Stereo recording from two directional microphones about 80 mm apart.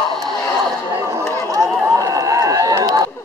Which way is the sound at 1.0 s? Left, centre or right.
Right.